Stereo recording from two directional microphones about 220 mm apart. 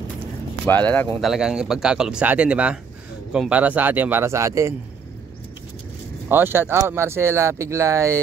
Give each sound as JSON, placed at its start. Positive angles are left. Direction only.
{"t": 0.7, "sound": "speech", "side_deg": 10}
{"t": 6.2, "sound": "speech", "side_deg": -10}